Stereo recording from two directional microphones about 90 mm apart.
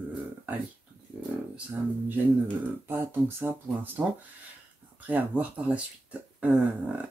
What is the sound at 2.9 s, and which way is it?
Speech, 25° right (ahead or behind).